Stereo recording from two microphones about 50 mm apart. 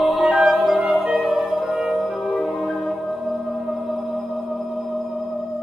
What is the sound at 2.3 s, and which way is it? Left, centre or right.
Music, centre.